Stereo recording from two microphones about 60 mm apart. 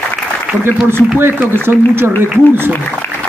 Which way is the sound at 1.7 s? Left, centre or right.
Right.